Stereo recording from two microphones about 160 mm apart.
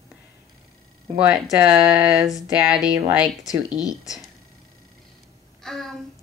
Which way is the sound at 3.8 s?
20° left (ahead or behind).